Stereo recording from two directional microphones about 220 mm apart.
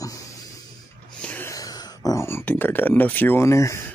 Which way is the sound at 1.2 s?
10° left (ahead or behind).